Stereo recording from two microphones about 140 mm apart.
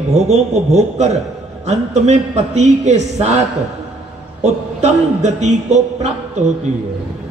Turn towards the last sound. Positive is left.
turn(degrees=-55)  # may be behind; listen again after turning